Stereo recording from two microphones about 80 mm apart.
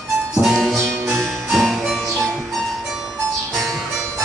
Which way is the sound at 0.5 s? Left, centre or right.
Centre.